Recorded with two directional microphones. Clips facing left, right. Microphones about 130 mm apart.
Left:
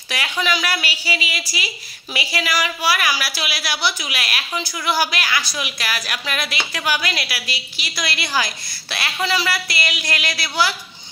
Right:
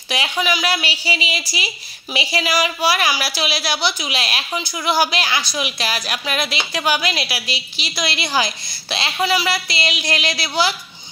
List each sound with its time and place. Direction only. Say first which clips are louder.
0.1 s a woman's voice: right 2 dB; 20° right (ahead or behind)